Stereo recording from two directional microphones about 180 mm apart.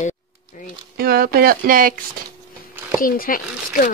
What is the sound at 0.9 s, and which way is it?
Speech, 60° right (ahead or behind).